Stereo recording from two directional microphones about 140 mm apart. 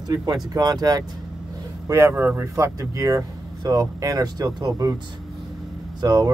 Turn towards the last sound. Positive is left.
turn(degrees=-30)  # may be behind; listen again after turning